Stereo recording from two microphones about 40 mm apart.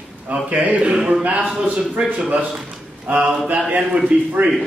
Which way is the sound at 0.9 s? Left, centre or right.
Centre.